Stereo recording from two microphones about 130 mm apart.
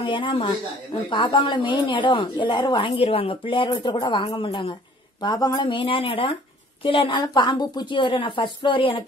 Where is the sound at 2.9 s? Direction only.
45° left (ahead or behind).